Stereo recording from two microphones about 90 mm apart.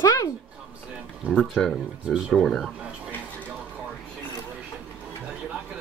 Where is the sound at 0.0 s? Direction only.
45° left (ahead or behind).